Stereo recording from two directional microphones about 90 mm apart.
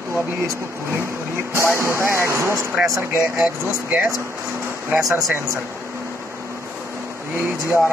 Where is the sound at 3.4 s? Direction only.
15° right (ahead or behind).